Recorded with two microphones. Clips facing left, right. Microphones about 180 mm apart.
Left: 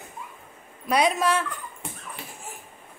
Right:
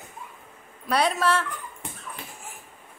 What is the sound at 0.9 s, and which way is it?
Speech, 10° left (ahead or behind).